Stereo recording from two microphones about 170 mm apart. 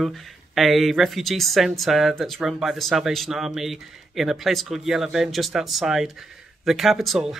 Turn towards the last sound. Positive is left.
turn(degrees=0)  # may be behind; listen again after turning